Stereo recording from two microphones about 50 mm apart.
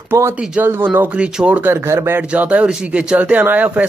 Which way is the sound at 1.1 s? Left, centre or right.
Right.